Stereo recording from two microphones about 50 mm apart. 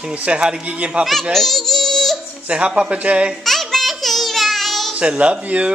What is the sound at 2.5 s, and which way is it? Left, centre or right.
Speech, right.